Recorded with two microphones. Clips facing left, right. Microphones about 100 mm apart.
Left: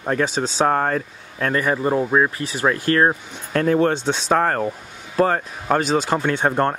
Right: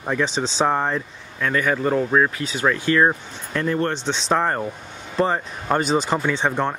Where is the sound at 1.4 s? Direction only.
45° left (ahead or behind).